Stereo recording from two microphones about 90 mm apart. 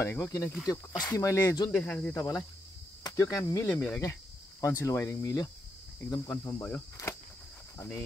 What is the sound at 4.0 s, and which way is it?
Speech, 35° left (ahead or behind).